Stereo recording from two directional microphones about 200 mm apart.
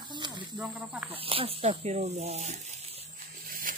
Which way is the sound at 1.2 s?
30° right (ahead or behind).